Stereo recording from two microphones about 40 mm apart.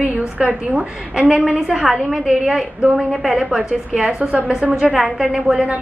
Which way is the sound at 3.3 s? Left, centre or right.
Centre.